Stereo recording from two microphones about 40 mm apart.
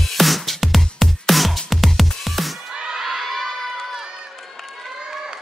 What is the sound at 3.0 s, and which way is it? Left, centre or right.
Crowd, centre.